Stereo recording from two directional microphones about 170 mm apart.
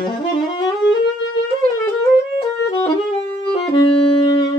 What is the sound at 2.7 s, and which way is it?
Saxophone, 30° left (ahead or behind).